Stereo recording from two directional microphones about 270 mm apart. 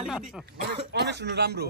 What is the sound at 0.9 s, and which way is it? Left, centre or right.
Speech, right.